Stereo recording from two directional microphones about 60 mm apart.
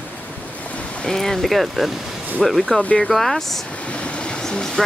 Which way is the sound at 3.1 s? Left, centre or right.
Centre.